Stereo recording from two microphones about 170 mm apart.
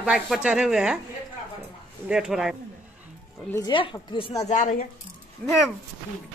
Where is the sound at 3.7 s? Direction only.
30° left (ahead or behind).